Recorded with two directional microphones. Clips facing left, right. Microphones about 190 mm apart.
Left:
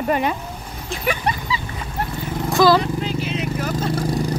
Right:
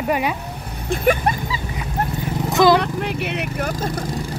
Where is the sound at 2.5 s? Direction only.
20° right (ahead or behind).